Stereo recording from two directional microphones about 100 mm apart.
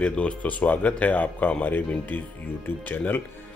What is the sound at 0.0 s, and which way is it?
Speech, 10° left (ahead or behind).